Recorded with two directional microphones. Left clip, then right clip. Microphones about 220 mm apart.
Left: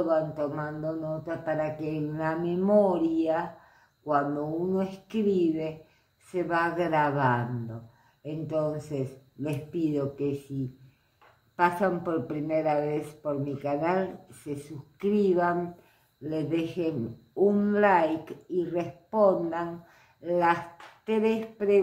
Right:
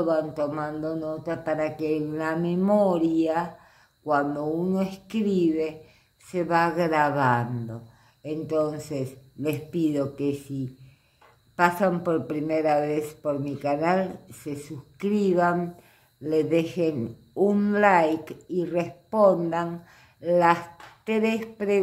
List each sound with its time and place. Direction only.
0.1 s a woman's voice: 35° right (ahead or behind)
4.7 s a woman's voice: 35° right (ahead or behind)
11.5 s a woman's voice: 35° right (ahead or behind)